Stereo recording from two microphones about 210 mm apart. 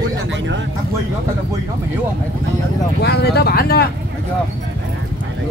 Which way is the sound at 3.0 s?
50° left (ahead or behind).